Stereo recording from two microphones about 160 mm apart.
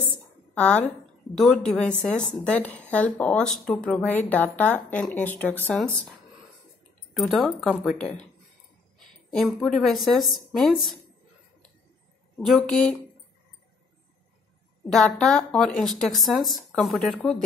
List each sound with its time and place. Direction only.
0.6 s a woman's voice: 10° left (ahead or behind)
7.2 s a woman's voice: centre (ahead or behind)
7.9 s speech: 45° left (ahead or behind)
9.3 s a woman's voice: centre (ahead or behind)
12.4 s a woman's voice: 5° left (ahead or behind)
14.9 s a woman's voice: 5° left (ahead or behind)